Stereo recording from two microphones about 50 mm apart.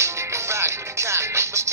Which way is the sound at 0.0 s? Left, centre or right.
Right.